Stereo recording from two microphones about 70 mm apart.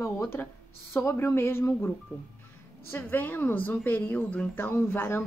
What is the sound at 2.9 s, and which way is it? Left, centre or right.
A woman's voice, left.